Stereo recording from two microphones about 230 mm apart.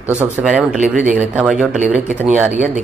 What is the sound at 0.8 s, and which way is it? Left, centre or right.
Speech, right.